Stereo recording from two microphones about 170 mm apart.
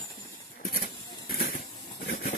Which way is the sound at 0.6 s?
55° left (ahead or behind).